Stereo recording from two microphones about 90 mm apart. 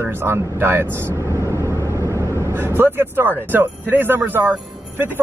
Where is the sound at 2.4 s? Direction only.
25° right (ahead or behind).